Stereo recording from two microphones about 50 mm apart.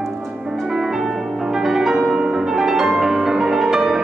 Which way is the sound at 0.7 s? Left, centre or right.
Centre.